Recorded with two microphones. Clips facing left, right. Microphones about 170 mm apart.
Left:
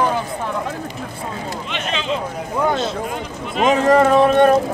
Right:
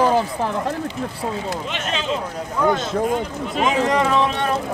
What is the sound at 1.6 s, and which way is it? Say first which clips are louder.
Speech: left 1 dB; 40° right (ahead or behind).